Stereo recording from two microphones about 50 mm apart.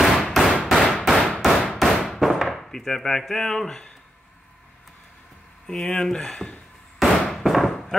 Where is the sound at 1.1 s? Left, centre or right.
Centre.